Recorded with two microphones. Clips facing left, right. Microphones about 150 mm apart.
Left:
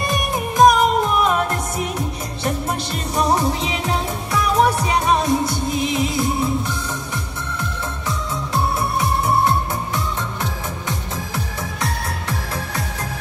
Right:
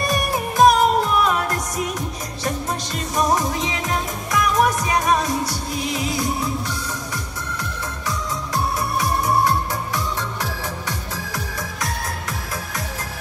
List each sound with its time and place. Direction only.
0.0 s music: 20° left (ahead or behind)
3.2 s music: 30° left (ahead or behind)
11.8 s music: 30° left (ahead or behind)